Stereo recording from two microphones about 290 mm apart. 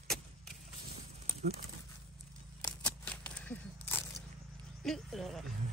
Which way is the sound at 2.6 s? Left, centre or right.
Centre.